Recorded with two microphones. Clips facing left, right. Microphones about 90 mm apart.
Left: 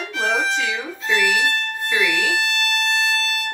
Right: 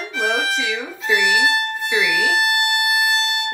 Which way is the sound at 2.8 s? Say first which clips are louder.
Right 2 dB; 10° right (ahead or behind).